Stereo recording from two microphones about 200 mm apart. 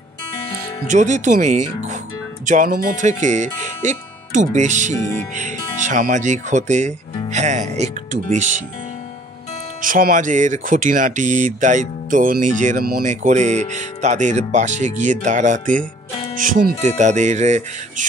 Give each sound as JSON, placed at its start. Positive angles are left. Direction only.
{"t": 0.8, "sound": "speech", "side_deg": -35}
{"t": 9.8, "sound": "speech", "side_deg": -40}